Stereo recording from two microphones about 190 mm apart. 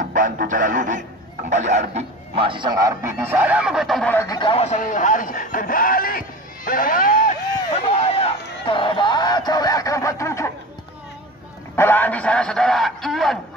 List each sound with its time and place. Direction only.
0.1 s speech: 45° right (ahead or behind); by 4.4 s 10° left (ahead or behind)
4.4 s speech: 30° left (ahead or behind); by 7.3 s 45° left (ahead or behind)
7.9 s a sound: 30° left (ahead or behind); by 10.5 s 15° left (ahead or behind)
11.7 s speech: 10° left (ahead or behind)